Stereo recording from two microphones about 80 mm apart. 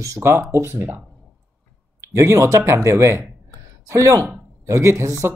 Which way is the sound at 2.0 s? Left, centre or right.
Right.